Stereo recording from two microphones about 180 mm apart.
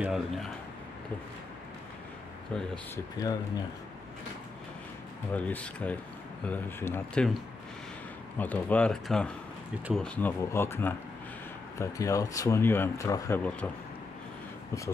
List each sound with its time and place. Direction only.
0.0 s speech: centre (ahead or behind)
2.5 s speech: 5° left (ahead or behind)
5.3 s speech: 10° left (ahead or behind)
8.4 s speech: 10° left (ahead or behind)